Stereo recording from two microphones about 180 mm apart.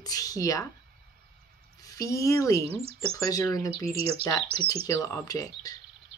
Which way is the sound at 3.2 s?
20° left (ahead or behind).